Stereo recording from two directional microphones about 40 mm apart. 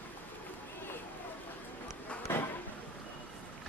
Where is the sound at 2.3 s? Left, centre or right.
Left.